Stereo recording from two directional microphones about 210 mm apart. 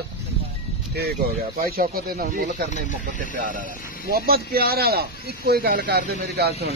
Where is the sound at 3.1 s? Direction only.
40° right (ahead or behind).